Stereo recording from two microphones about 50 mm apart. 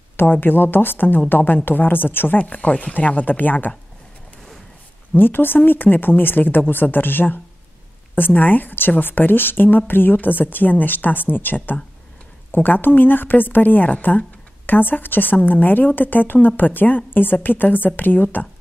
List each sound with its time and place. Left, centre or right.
0.2 s speech: left
2.3 s a woman's voice: left
5.1 s a woman's voice: left